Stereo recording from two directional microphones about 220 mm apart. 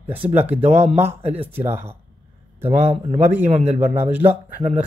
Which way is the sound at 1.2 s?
30° right (ahead or behind).